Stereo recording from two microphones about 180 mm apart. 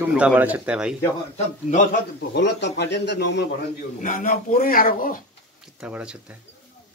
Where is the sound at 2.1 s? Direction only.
70° left (ahead or behind).